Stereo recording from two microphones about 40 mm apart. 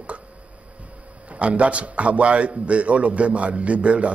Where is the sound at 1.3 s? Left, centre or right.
Right.